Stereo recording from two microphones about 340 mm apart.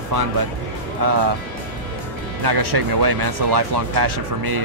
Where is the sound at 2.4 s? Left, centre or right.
Right.